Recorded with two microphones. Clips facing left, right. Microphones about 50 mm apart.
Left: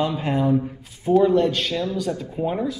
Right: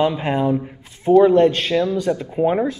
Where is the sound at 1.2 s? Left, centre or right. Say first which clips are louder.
Right 5 dB; right.